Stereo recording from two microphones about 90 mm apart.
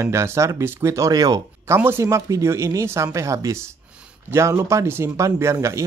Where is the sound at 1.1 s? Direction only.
50° right (ahead or behind).